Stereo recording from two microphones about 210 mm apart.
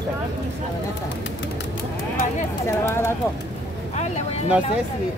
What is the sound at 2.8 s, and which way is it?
Speech, 10° left (ahead or behind).